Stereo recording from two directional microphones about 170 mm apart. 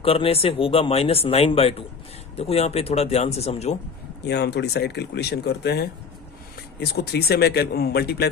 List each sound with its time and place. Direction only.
0.0 s speech: 35° left (ahead or behind)
4.3 s speech: 80° left